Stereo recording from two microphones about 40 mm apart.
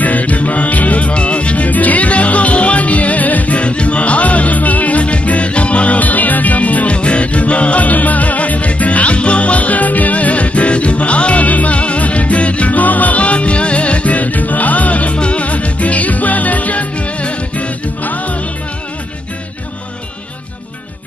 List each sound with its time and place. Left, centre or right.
0.0 s music: left